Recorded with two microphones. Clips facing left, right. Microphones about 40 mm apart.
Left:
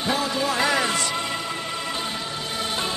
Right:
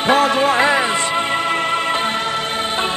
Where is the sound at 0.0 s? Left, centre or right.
Right.